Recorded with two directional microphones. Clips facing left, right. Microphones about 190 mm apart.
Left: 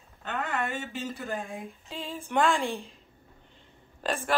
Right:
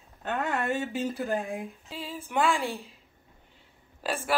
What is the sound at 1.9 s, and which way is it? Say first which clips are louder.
Speech: left 2 dB; 5° right (ahead or behind).